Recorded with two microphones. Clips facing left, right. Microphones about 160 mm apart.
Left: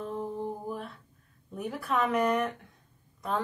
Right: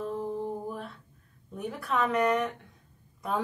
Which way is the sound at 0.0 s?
Centre (ahead or behind).